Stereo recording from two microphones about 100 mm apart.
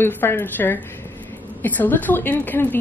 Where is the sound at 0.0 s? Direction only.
20° left (ahead or behind).